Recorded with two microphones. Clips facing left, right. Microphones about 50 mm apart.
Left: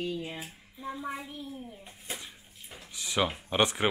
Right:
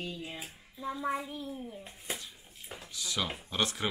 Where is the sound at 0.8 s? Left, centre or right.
Centre.